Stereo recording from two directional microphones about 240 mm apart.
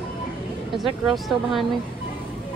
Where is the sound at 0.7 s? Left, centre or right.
Centre.